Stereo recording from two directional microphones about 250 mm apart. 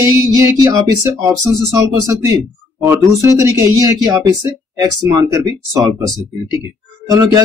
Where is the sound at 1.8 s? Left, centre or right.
Centre.